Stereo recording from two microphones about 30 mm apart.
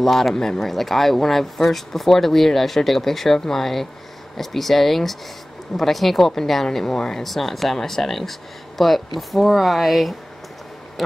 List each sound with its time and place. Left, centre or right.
0.0 s speech: centre
7.2 s speech: centre